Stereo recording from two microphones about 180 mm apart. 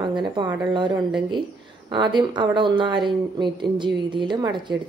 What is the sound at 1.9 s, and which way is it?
A woman's voice, 25° right (ahead or behind).